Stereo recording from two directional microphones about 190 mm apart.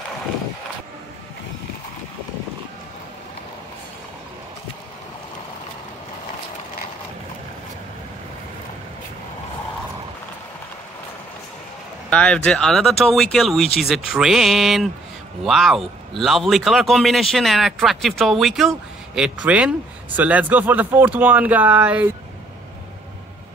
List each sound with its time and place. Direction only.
12.1 s speech: 5° left (ahead or behind)